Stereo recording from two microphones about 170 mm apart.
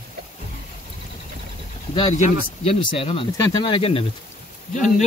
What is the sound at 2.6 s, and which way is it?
Speech, 30° left (ahead or behind).